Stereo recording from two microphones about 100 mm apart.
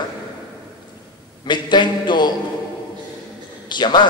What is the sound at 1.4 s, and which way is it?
Speech, 50° left (ahead or behind).